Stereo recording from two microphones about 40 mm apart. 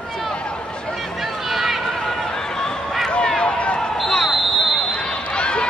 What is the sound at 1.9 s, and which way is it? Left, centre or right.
Chatter, centre.